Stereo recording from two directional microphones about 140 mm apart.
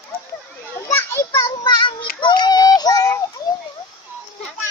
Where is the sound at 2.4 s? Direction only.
30° left (ahead or behind).